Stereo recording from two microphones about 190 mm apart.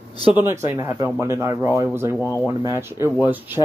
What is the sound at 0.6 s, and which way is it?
Speech, 15° right (ahead or behind).